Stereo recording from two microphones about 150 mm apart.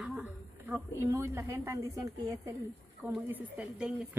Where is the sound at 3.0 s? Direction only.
10° right (ahead or behind).